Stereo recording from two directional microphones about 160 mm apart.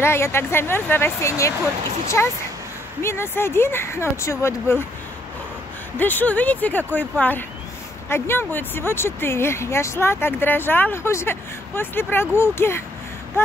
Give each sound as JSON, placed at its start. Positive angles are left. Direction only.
{"t": 0.0, "sound": "speech", "side_deg": 15}
{"t": 5.9, "sound": "speech", "side_deg": 10}